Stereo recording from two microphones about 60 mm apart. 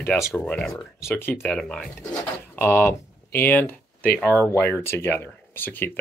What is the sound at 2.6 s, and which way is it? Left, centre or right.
Speech, left.